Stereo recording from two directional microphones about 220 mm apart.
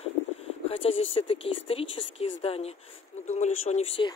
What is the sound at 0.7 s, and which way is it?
Speech, 25° left (ahead or behind).